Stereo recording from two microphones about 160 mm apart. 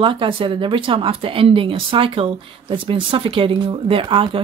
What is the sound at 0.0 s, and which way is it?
Speech, 35° right (ahead or behind).